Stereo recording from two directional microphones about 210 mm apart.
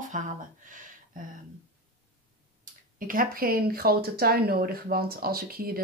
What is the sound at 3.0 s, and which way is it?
Speech, 40° right (ahead or behind).